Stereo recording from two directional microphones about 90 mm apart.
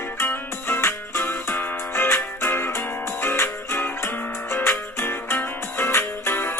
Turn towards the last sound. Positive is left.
turn(degrees=25)  # may be behind; listen again after turning